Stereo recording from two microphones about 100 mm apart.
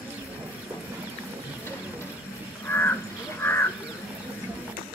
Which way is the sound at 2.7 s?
20° left (ahead or behind).